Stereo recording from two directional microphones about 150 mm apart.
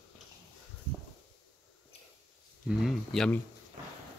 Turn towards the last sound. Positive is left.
turn(degrees=5)  # may be behind; listen again after turning